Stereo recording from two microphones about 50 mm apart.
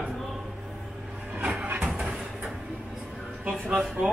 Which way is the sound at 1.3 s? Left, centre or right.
Right.